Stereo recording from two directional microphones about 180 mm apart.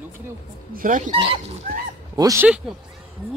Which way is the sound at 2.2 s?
20° right (ahead or behind).